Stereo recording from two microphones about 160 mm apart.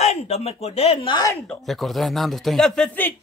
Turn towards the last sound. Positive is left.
turn(degrees=10)  # may be behind; listen again after turning